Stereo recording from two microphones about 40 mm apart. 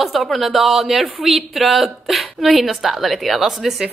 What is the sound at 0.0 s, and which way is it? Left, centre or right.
A woman's voice, centre.